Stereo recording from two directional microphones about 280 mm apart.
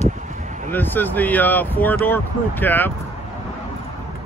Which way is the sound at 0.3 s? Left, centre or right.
Right.